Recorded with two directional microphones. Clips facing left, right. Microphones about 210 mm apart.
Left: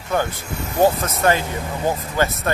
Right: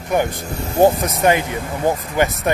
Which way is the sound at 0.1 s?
15° right (ahead or behind).